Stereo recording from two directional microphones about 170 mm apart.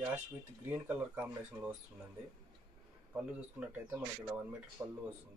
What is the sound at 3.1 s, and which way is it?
Speech, 10° right (ahead or behind).